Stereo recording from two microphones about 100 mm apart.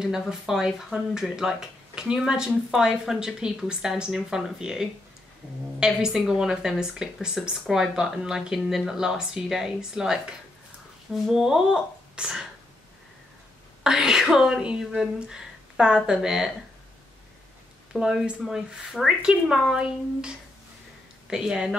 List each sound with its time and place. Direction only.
0.3 s speech: 5° right (ahead or behind)
11.2 s speech: 5° right (ahead or behind)
13.8 s speech: 5° right (ahead or behind)
17.9 s speech: 5° right (ahead or behind)